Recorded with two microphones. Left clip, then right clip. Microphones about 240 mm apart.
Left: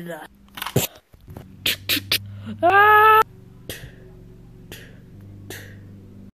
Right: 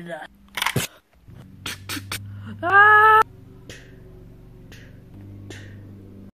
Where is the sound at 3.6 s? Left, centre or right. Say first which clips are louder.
Left 6 dB; left.